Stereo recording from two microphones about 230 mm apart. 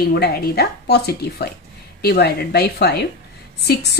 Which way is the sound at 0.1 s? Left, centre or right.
Left.